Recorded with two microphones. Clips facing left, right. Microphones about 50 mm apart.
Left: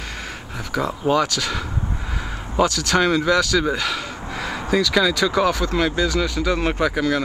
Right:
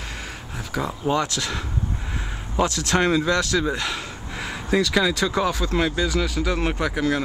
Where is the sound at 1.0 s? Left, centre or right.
Left.